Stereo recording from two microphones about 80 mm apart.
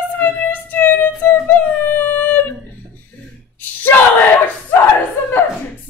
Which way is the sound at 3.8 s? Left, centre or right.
Left.